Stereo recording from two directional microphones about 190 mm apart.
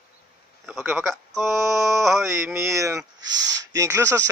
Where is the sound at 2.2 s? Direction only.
15° right (ahead or behind).